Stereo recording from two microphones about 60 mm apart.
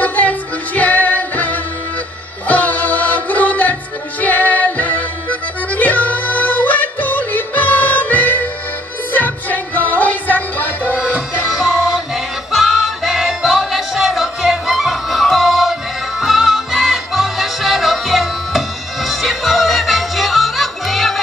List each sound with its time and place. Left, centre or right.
0.0 s music: left
11.0 s music: right
11.4 s music: centre